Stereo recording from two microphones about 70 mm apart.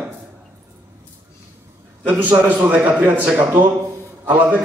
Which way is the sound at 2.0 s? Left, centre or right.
Right.